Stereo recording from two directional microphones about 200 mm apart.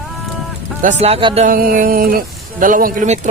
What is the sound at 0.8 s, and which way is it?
Speech, 35° right (ahead or behind).